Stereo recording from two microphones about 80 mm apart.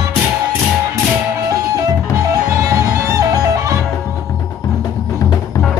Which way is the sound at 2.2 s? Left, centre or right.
Right.